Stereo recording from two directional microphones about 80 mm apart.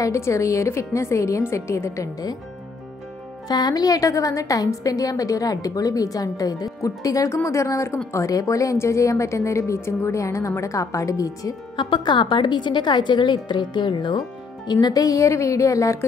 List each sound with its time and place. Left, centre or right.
0.0 s a woman's voice: left
3.4 s a woman's voice: left
11.7 s a woman's voice: left
14.7 s a woman's voice: left